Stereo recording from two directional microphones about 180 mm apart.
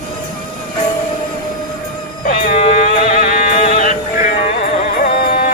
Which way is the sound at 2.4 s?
45° left (ahead or behind).